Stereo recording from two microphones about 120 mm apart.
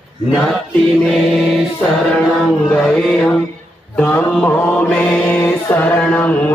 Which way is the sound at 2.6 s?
5° left (ahead or behind).